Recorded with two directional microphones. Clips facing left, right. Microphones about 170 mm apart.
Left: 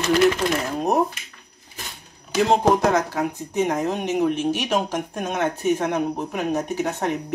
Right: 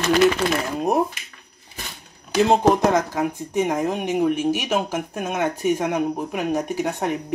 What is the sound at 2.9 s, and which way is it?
A woman's voice, 15° right (ahead or behind).